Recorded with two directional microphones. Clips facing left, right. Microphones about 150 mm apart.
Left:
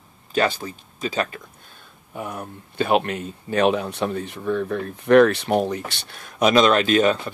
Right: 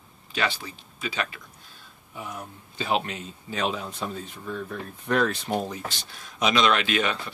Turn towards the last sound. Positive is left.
turn(degrees=40)  # may be behind; listen again after turning